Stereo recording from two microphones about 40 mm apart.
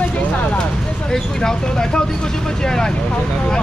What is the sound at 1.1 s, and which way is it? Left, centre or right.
Speech, centre.